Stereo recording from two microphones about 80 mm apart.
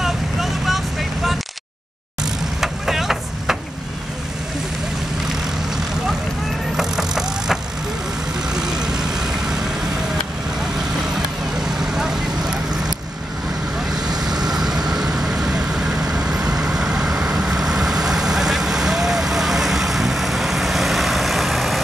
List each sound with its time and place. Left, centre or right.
0.0 s vehicle: centre
6.8 s vehicle: centre
8.5 s vehicle: centre
11.9 s vehicle: centre
13.9 s vehicle: right
14.5 s vehicle: centre